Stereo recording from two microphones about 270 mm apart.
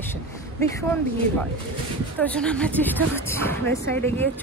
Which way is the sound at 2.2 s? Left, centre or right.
Centre.